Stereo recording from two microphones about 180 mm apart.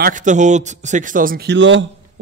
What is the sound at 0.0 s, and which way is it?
A man's voice, 45° right (ahead or behind).